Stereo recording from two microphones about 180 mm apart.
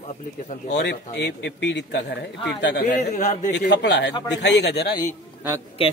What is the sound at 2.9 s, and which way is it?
Speech, 45° left (ahead or behind).